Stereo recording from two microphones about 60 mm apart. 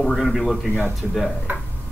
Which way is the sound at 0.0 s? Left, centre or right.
Centre.